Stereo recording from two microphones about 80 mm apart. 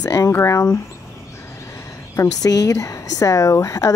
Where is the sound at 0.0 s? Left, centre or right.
Left.